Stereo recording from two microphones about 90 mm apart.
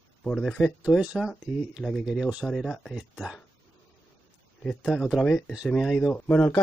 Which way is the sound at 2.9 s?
10° right (ahead or behind).